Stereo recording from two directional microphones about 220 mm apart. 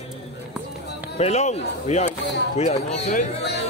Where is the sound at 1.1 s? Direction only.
30° left (ahead or behind).